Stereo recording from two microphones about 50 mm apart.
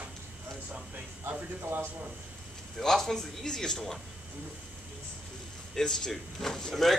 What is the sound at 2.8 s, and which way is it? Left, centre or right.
Speech, centre.